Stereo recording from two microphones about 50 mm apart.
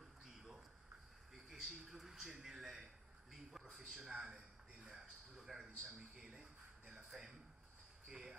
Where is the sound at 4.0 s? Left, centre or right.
Centre.